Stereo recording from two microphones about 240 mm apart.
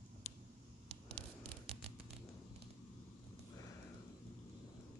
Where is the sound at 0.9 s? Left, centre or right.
Right.